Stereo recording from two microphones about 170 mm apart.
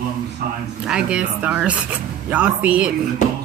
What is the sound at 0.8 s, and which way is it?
Speech, 5° right (ahead or behind).